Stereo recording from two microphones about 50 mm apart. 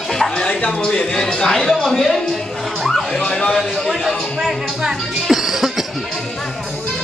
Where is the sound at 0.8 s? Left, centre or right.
Left; by 2.4 s centre.